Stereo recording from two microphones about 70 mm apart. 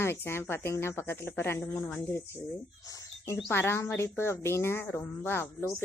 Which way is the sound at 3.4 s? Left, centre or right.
Left.